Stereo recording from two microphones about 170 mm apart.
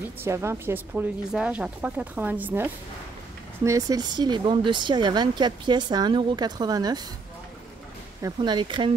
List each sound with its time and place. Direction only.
0.2 s speech: 15° right (ahead or behind)
8.2 s speech: 25° right (ahead or behind)